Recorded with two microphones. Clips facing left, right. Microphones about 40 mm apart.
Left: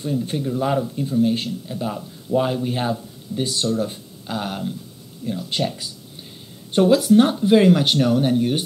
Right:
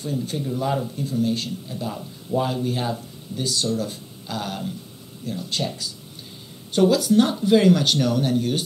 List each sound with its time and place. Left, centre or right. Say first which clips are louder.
0.0 s speech: left 3 dB; left